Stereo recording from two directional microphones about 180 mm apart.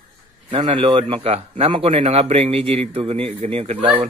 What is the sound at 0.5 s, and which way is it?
A man's voice, 35° right (ahead or behind).